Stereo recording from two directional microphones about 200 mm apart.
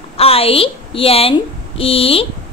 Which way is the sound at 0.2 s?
30° left (ahead or behind).